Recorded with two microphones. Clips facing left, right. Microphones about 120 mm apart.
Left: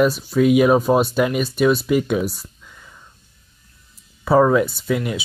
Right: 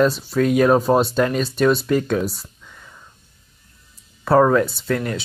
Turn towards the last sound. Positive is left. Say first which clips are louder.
# left 1 dB
turn(degrees=10)  # may be behind; listen again after turning